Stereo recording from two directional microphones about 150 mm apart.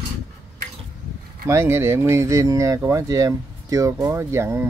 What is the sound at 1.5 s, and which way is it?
Speech, 15° right (ahead or behind).